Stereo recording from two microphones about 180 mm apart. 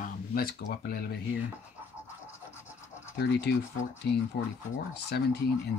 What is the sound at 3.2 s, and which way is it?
Speech, 70° left (ahead or behind).